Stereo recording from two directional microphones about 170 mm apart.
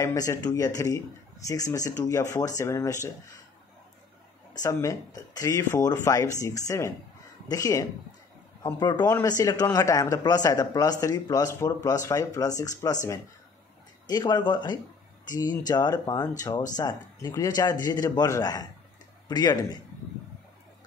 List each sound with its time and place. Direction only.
0.0 s a man's voice: 20° left (ahead or behind)
4.6 s a man's voice: 20° left (ahead or behind)
14.0 s a man's voice: 25° left (ahead or behind)